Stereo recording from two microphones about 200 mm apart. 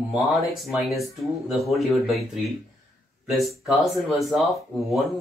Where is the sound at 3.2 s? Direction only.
Centre (ahead or behind).